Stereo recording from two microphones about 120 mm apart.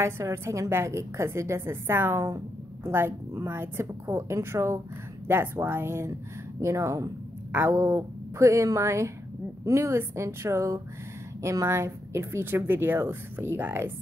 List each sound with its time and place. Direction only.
0.0 s a woman's voice: 25° right (ahead or behind)